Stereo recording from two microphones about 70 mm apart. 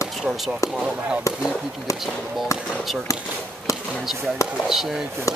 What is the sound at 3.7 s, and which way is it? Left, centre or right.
Basketball bounce, left.